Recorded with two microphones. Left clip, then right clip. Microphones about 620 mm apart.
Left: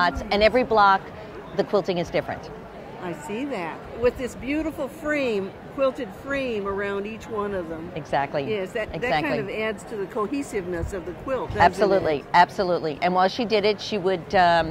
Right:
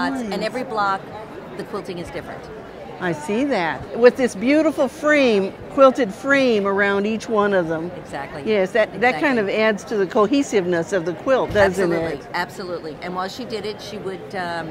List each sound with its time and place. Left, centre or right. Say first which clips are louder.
0.0 s a woman's voice: left 4 dB; left
3.1 s speech: right 9 dB; right
8.1 s a woman's voice: left 6 dB; left
8.5 s speech: right 9 dB; right
11.6 s a woman's voice: even; left